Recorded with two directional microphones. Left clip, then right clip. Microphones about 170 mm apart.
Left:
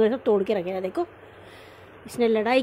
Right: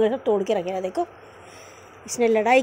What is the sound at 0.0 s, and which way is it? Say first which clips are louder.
Speech: even; 20° left (ahead or behind).